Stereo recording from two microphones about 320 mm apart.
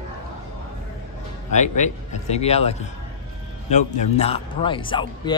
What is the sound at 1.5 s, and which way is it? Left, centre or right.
A man's voice, left.